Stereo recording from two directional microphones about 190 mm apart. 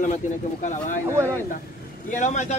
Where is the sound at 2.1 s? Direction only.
40° left (ahead or behind).